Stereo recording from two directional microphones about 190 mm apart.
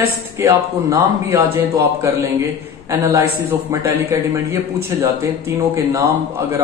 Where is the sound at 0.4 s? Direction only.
15° right (ahead or behind).